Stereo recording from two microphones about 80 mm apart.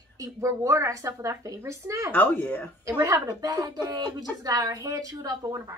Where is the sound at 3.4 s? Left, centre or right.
Right.